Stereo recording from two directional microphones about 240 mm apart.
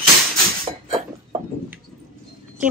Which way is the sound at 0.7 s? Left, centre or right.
Right.